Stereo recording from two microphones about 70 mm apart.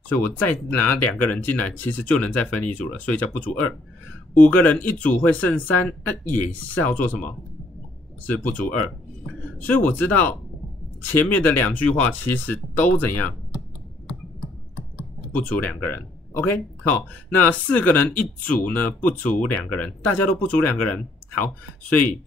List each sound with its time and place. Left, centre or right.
0.1 s speech: left
4.4 s speech: left
15.3 s speech: left